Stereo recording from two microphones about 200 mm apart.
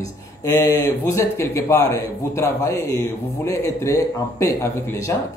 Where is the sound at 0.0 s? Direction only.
15° left (ahead or behind).